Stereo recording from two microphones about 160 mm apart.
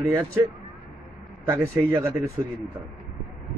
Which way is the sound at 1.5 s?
15° right (ahead or behind).